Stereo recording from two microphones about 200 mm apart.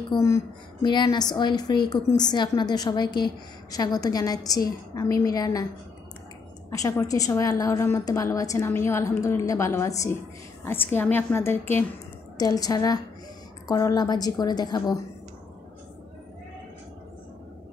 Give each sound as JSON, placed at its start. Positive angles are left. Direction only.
{"t": 0.1, "sound": "a woman's voice", "side_deg": 20}
{"t": 6.7, "sound": "a woman's voice", "side_deg": 15}